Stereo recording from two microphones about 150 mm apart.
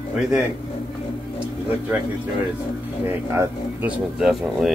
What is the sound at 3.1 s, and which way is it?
Speech, 15° right (ahead or behind).